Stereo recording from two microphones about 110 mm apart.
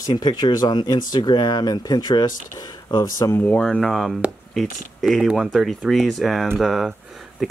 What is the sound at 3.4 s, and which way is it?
Speech, 10° left (ahead or behind).